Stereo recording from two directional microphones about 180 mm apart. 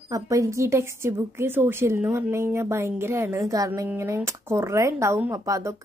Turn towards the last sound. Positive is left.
turn(degrees=-15)  # may be behind; listen again after turning